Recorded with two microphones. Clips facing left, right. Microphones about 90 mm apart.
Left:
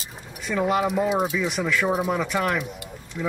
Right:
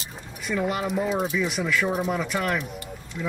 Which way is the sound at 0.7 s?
25° left (ahead or behind).